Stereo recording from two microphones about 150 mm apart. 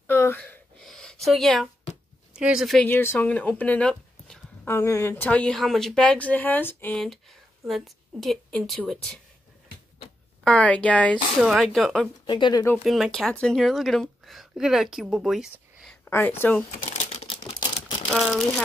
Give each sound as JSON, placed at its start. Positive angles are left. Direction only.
{"t": 0.0, "sound": "a sound", "side_deg": 15}
{"t": 2.3, "sound": "speech", "side_deg": -5}
{"t": 2.9, "sound": "speech", "side_deg": 15}
{"t": 10.4, "sound": "speech", "side_deg": 10}
{"t": 11.3, "sound": "speech", "side_deg": 0}
{"t": 12.3, "sound": "speech", "side_deg": 30}
{"t": 12.8, "sound": "speech", "side_deg": 0}
{"t": 16.1, "sound": "speech", "side_deg": 15}
{"t": 16.8, "sound": "a sound", "side_deg": 45}
{"t": 18.1, "sound": "speech", "side_deg": 0}